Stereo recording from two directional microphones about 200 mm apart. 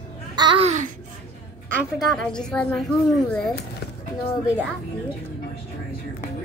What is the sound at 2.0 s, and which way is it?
Speech, 5° left (ahead or behind).